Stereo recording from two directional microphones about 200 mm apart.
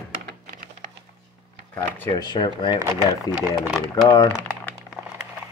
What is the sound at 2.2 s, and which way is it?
Speech, 20° left (ahead or behind).